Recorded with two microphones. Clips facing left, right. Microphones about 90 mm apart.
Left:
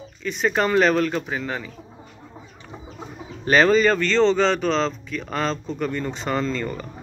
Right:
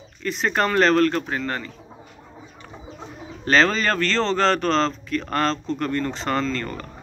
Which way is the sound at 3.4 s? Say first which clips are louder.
Left 3 dB; 10° left (ahead or behind).